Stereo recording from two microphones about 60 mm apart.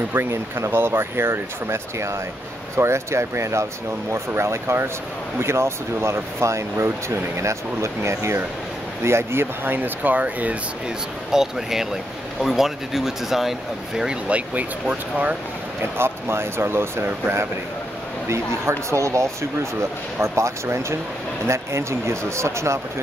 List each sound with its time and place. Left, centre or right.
0.1 s speech: right
11.3 s speech: centre
14.2 s speech: right
15.8 s speech: right